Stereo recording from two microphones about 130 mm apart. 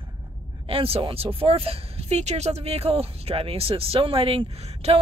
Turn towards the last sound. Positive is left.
turn(degrees=-50)  # may be behind; listen again after turning